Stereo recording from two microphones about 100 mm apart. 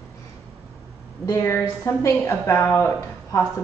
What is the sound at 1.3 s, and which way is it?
A woman's voice, 25° left (ahead or behind).